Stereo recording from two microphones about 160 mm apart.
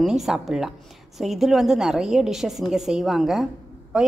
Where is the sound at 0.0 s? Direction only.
5° right (ahead or behind).